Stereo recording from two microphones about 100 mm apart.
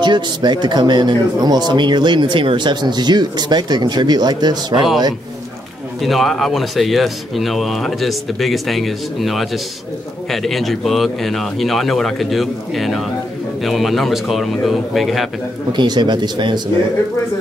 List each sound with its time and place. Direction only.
0.0 s speech: 50° right (ahead or behind)
5.9 s speech: centre (ahead or behind)
15.7 s speech: 50° right (ahead or behind)